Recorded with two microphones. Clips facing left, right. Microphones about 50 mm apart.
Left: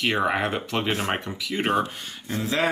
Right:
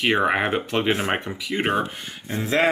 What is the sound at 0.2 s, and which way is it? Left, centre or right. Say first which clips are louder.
Speech: right 3 dB; right.